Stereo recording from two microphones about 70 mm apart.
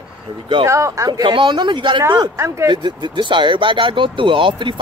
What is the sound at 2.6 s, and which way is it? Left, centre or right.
Speech, right.